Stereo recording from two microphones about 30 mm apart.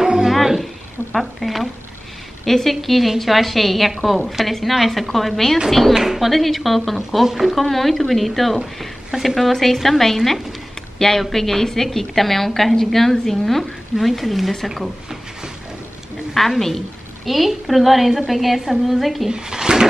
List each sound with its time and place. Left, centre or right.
0.0 s a sound: centre
0.3 s a sound: centre
1.1 s a woman's voice: centre
5.9 s a woman's voice: centre
7.2 s speech: centre
7.5 s a woman's voice: centre
13.9 s a woman's voice: centre
16.3 s a woman's voice: centre
19.2 s speech: right